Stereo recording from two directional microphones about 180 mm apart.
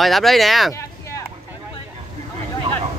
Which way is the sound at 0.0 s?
Centre (ahead or behind).